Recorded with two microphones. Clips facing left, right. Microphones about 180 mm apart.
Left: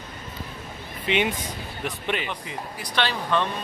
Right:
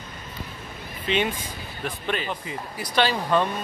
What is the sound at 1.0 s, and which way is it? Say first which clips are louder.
Speech: left 1 dB; 20° left (ahead or behind).